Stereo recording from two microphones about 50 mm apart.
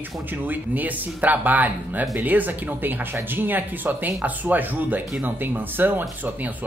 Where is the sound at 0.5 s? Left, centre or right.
Right.